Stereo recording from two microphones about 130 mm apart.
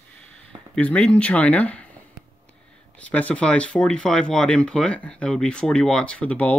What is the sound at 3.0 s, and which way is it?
Speech, 10° left (ahead or behind).